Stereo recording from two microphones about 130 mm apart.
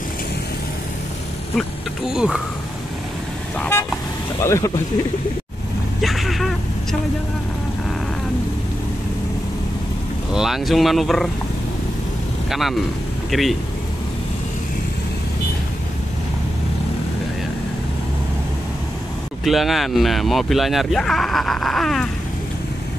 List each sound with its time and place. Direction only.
2.1 s speech: 5° right (ahead or behind)
3.5 s vehicle: 15° left (ahead or behind)
4.4 s speech: 20° left (ahead or behind)
5.9 s vehicle: centre (ahead or behind)
10.3 s speech: 5° right (ahead or behind)
12.4 s speech: centre (ahead or behind)
19.4 s speech: centre (ahead or behind)